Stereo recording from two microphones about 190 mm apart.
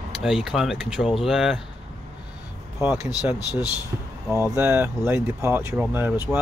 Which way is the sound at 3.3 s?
20° left (ahead or behind).